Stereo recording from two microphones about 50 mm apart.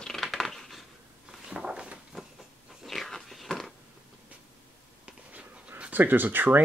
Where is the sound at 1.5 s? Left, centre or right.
Centre.